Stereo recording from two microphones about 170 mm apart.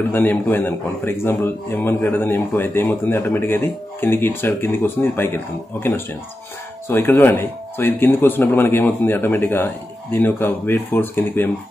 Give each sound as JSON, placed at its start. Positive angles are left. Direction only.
{"t": 0.1, "sound": "a man's voice", "side_deg": 10}